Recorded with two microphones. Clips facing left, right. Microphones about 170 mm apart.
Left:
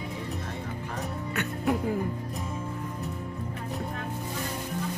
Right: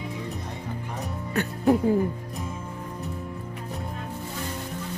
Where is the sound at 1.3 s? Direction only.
35° right (ahead or behind).